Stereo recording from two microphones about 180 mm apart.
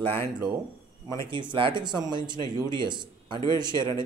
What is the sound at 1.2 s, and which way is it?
Speech, 25° right (ahead or behind).